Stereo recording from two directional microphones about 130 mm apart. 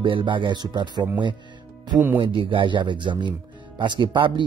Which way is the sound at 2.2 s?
40° right (ahead or behind).